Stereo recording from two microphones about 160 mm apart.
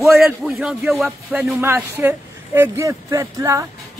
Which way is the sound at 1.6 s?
15° right (ahead or behind).